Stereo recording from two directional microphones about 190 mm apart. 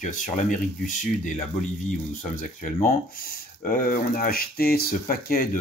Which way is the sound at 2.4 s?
45° left (ahead or behind).